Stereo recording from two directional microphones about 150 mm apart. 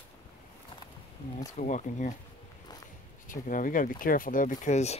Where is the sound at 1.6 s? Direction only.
55° left (ahead or behind).